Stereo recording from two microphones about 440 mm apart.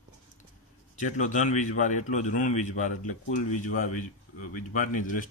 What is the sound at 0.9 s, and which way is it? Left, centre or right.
Speech, centre.